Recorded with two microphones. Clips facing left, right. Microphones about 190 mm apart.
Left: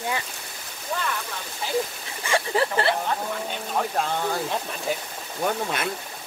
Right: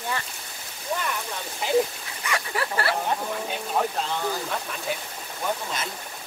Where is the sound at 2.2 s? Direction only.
25° left (ahead or behind).